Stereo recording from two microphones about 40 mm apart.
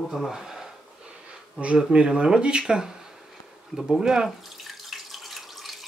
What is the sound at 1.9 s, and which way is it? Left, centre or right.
Speech, right.